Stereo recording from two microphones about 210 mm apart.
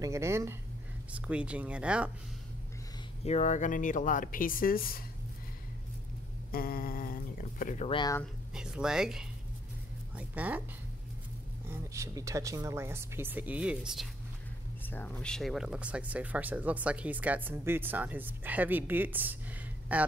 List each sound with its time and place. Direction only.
0.0 s speech: 15° right (ahead or behind)
3.3 s speech: 35° left (ahead or behind)
6.5 s speech: 45° left (ahead or behind)
7.9 s speech: 20° left (ahead or behind)
8.5 s speech: 5° right (ahead or behind)
11.7 s speech: 15° right (ahead or behind)
14.9 s speech: 5° left (ahead or behind)